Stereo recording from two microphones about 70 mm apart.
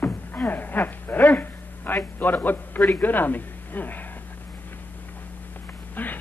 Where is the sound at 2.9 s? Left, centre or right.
Left.